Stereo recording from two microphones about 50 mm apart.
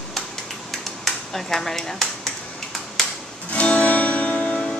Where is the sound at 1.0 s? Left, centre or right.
Centre.